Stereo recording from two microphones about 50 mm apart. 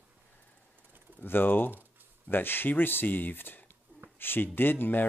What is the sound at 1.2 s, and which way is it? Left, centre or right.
Speech, left.